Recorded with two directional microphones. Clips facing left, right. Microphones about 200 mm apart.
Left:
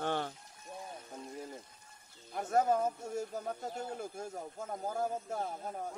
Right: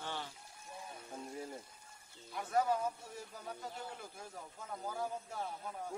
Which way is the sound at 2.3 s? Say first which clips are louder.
Left 4 dB; 45° left (ahead or behind).